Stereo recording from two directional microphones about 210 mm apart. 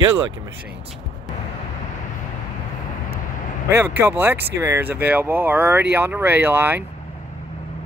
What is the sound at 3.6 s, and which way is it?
Speech, 10° right (ahead or behind).